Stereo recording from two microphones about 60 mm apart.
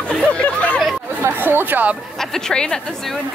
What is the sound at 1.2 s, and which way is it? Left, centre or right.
Chatter, right.